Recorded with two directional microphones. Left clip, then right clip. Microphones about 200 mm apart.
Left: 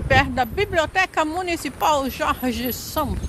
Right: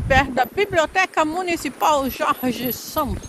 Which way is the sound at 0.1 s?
10° right (ahead or behind).